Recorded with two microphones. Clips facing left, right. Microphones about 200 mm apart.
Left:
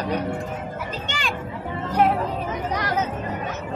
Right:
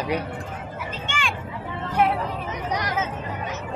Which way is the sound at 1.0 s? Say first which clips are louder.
Even; 40° left (ahead or behind).